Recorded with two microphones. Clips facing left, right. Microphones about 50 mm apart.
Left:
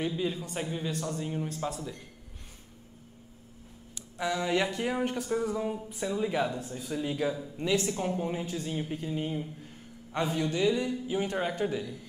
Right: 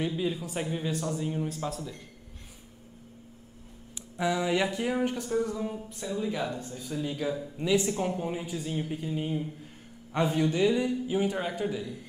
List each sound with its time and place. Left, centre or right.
0.0 s a man's voice: centre
4.2 s a man's voice: centre
5.3 s speech: centre
7.7 s a man's voice: centre
10.1 s speech: centre
11.3 s a man's voice: centre